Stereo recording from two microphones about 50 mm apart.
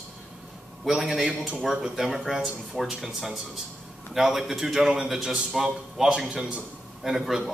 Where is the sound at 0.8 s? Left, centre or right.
Centre.